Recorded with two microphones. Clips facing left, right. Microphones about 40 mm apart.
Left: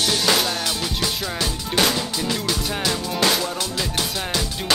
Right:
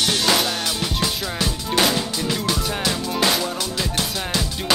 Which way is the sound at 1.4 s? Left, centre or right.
Centre.